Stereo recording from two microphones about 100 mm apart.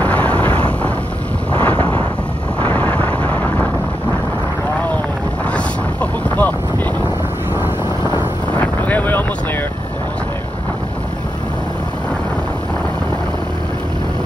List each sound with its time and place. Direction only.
0.0 s a sound: 15° left (ahead or behind)
1.5 s wind noise: 15° left (ahead or behind)
2.6 s vehicle: 15° left (ahead or behind)
6.2 s boat: 15° left (ahead or behind)
8.5 s boat: 15° left (ahead or behind)